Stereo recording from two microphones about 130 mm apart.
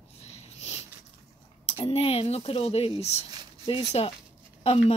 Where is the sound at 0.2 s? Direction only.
55° left (ahead or behind).